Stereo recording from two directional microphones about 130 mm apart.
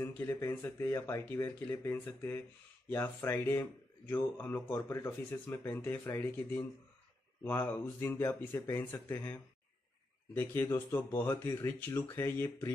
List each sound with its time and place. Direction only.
0.0 s speech: 15° left (ahead or behind)